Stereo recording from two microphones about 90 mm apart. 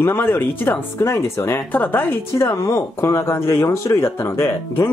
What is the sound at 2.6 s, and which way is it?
Speech, 35° left (ahead or behind).